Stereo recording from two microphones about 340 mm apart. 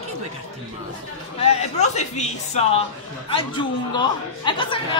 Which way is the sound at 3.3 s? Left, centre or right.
Centre.